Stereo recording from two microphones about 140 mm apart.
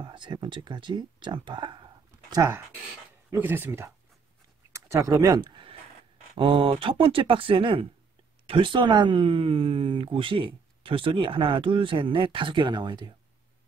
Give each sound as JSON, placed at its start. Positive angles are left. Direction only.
{"t": 0.0, "sound": "speech", "side_deg": -35}
{"t": 2.3, "sound": "speech", "side_deg": -20}
{"t": 5.4, "sound": "a sound", "side_deg": -35}
{"t": 6.3, "sound": "speech", "side_deg": -40}